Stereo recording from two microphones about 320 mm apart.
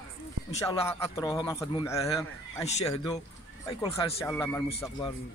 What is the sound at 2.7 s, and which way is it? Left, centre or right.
Speech, centre.